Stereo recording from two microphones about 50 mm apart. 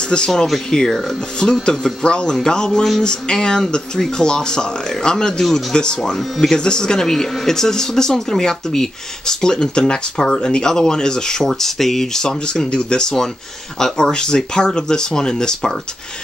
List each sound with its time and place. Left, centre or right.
0.1 s speech: centre
6.1 s speech: centre
6.6 s speech: centre